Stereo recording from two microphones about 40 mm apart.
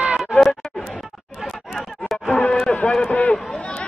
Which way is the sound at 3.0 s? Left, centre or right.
Left.